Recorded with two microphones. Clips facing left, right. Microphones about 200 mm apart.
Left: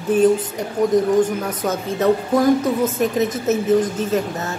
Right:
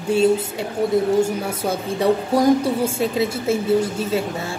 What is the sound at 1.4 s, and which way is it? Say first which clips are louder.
A woman's voice: left 1 dB; 10° right (ahead or behind).